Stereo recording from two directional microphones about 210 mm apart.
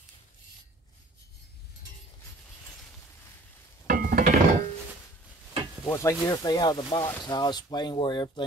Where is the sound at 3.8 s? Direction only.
40° right (ahead or behind).